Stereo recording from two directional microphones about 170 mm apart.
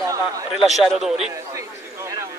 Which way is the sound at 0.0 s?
20° right (ahead or behind).